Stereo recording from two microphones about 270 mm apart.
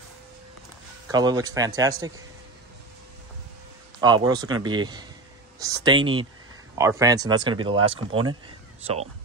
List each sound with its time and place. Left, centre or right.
1.1 s speech: centre
4.0 s speech: centre